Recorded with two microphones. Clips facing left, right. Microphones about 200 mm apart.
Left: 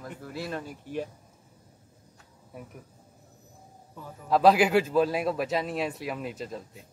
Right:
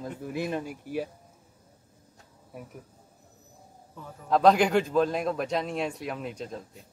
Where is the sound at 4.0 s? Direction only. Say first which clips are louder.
Even; 5° left (ahead or behind).